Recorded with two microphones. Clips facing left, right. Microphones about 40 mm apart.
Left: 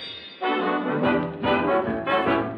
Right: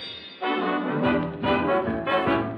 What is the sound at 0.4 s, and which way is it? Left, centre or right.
Brass instrument, centre.